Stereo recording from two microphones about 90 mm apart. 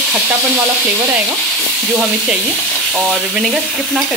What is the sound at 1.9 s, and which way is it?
Speech, 10° right (ahead or behind).